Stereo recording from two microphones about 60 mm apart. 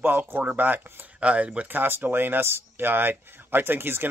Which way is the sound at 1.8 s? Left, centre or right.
Right.